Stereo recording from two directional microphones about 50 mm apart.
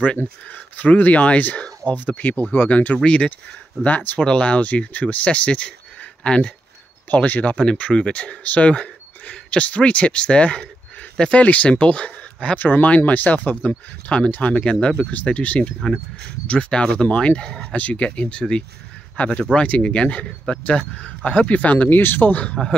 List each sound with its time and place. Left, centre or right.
0.0 s speech: left
3.0 s speech: left
3.8 s speech: left
4.2 s speech: left
7.1 s speech: left
12.5 s speech: left